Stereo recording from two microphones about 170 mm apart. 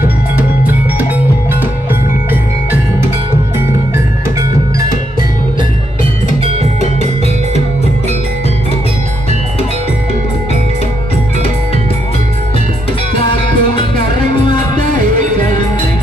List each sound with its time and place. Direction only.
0.0 s music: 10° right (ahead or behind)
3.9 s music: 15° right (ahead or behind)
6.6 s music: 40° right (ahead or behind)
13.2 s music: 30° left (ahead or behind)